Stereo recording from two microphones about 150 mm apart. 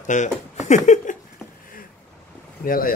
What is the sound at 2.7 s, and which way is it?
Speech, 70° left (ahead or behind).